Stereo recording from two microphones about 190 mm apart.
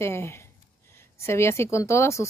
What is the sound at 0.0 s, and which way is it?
Speech, 15° left (ahead or behind).